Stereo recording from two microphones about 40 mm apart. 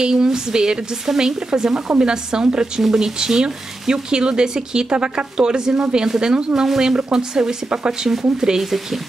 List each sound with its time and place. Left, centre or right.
0.0 s speech: centre
8.1 s speech: centre